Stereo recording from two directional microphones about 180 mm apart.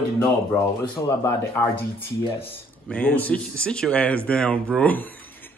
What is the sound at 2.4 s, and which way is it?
Speech, 10° left (ahead or behind).